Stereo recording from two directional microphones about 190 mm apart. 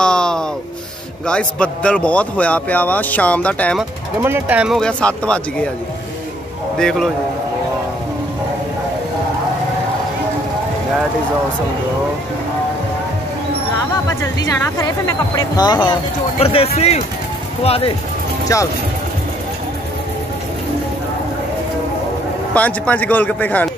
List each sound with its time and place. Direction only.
0.0 s a sound: 5° left (ahead or behind)
1.2 s a man's voice: 5° left (ahead or behind)
4.2 s speech: 10° right (ahead or behind); by 5.7 s 5° left (ahead or behind)
6.8 s speech: 5° left (ahead or behind)
13.7 s speech: 15° left (ahead or behind)
18.5 s a man's voice: 15° left (ahead or behind)
22.5 s a man's voice: 10° left (ahead or behind)